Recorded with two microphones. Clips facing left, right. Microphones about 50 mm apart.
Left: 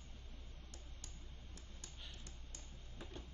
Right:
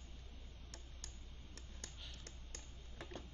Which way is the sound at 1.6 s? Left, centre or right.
Right.